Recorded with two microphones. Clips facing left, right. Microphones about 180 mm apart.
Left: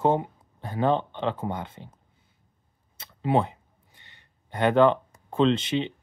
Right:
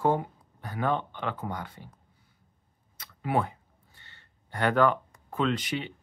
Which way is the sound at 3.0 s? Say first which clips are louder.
Left 4 dB; 25° left (ahead or behind).